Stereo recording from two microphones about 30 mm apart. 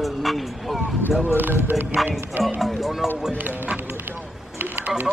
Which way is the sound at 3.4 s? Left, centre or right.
Right.